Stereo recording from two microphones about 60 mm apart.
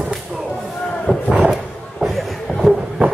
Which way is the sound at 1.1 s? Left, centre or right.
Left.